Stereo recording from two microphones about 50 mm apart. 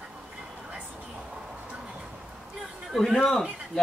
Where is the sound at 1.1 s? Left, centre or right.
Centre.